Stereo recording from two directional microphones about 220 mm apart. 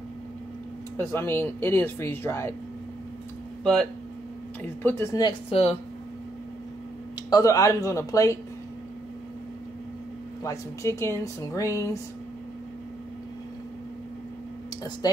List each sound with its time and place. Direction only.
0.9 s speech: 10° left (ahead or behind)
4.8 s speech: 15° left (ahead or behind)
5.5 s speech: 25° left (ahead or behind)
7.2 s speech: 15° left (ahead or behind)
10.4 s speech: 15° left (ahead or behind)